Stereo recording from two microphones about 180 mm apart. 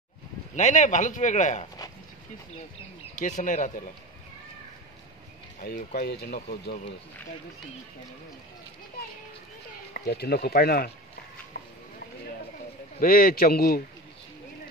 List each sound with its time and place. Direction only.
0.6 s a man's voice: 45° left (ahead or behind)
3.2 s a man's voice: 45° left (ahead or behind)
5.6 s speech: 55° left (ahead or behind); by 6.9 s 70° left (ahead or behind)
9.9 s speech: 60° left (ahead or behind)
13.0 s speech: 55° left (ahead or behind)